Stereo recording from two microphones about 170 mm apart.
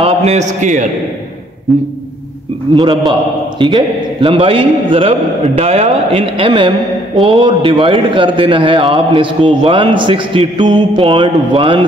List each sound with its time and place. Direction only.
0.0 s a man's voice: 40° right (ahead or behind)
1.7 s a sound: centre (ahead or behind)
2.7 s a man's voice: 25° right (ahead or behind)